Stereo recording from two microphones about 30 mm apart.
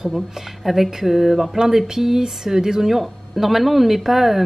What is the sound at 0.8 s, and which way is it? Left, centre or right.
Speech, centre.